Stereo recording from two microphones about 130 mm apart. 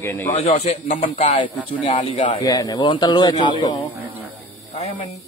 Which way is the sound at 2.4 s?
30° left (ahead or behind).